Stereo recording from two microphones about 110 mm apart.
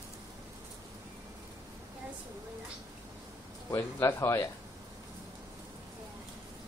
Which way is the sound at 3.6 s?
25° left (ahead or behind).